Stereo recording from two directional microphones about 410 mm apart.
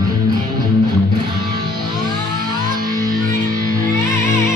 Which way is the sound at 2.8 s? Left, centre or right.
Right.